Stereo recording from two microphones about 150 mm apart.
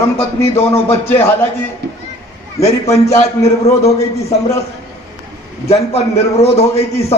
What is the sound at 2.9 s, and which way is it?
Speech, 20° left (ahead or behind).